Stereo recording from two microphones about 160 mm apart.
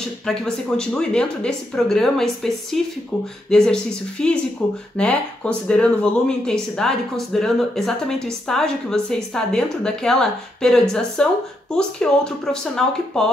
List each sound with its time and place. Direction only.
0.3 s speech: 5° left (ahead or behind)